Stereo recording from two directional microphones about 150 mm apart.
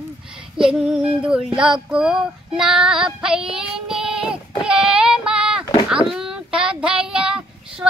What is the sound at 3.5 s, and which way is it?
Child singing, 5° right (ahead or behind).